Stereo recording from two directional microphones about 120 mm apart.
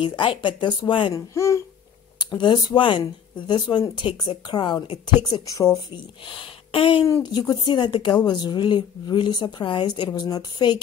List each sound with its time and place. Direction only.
0.0 s a woman's voice: 45° left (ahead or behind)
1.1 s speech: 25° left (ahead or behind)
2.1 s a woman's voice: 40° left (ahead or behind)
6.2 s a woman's voice: 45° left (ahead or behind)